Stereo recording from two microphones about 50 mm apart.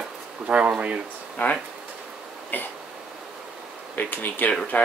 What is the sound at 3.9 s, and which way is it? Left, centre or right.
Speech, left.